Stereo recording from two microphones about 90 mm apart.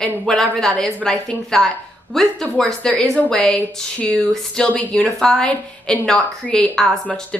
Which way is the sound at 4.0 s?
15° left (ahead or behind).